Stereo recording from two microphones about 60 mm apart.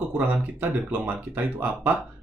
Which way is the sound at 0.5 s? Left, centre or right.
Right.